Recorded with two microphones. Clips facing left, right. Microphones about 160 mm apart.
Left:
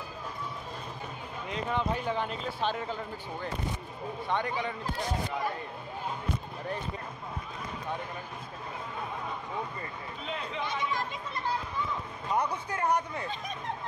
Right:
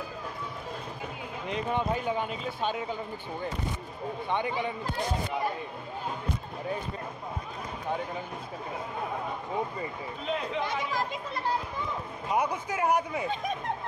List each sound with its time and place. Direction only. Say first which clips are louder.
1.5 s speech: right 2 dB; 15° right (ahead or behind)
4.3 s speech: right 1 dB; 15° right (ahead or behind)
12.3 s speech: right 2 dB; 10° right (ahead or behind)